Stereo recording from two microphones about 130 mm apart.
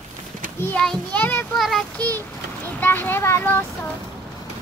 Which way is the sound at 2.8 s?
15° left (ahead or behind).